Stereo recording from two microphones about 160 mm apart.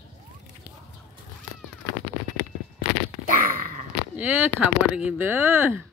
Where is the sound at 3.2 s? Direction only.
60° right (ahead or behind).